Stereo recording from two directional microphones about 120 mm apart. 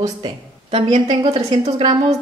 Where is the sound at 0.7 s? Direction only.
50° right (ahead or behind).